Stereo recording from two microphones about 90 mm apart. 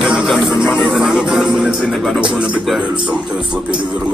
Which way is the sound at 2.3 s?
10° right (ahead or behind).